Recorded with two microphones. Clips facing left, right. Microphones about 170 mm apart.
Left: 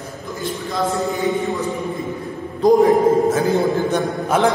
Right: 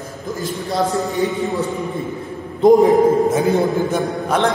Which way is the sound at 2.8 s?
20° right (ahead or behind).